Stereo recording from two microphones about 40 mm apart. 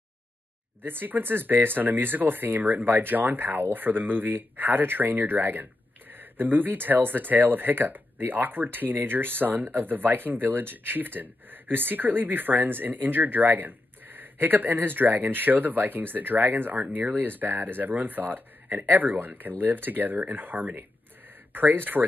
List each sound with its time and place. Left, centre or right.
0.8 s speech: right